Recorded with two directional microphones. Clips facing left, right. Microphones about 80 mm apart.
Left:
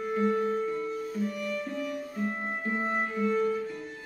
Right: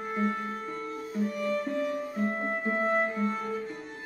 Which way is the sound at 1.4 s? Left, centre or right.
Right.